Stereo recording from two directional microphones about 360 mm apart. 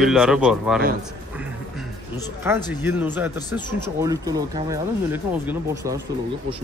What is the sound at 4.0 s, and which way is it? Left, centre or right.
Speech, centre.